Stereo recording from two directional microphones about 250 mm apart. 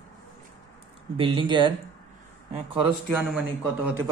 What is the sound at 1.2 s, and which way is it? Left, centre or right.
Speech, centre.